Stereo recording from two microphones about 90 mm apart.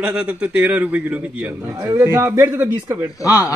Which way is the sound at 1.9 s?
30° right (ahead or behind).